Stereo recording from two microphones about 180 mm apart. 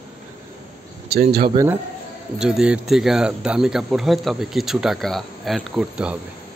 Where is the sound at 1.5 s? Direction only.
15° right (ahead or behind).